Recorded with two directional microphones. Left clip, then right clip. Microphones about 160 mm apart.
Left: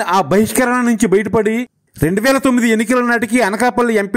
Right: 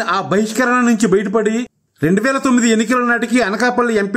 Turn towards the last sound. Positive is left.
turn(degrees=40)  # may be behind; listen again after turning